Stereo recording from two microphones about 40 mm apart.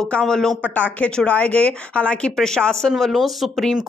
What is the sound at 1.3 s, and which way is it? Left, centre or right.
Speech, left.